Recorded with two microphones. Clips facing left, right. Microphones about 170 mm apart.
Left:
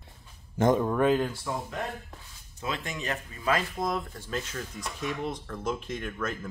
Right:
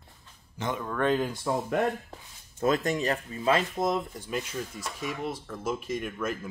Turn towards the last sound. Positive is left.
turn(degrees=-5)  # may be behind; listen again after turning